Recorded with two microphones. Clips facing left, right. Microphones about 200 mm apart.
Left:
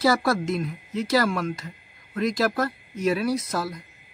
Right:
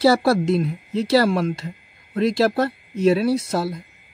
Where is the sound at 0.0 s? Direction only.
30° right (ahead or behind).